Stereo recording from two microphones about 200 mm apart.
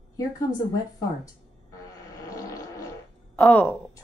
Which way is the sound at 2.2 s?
15° left (ahead or behind).